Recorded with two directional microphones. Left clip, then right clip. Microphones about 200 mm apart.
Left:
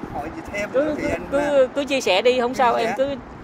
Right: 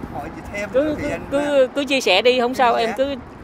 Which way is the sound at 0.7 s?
30° right (ahead or behind).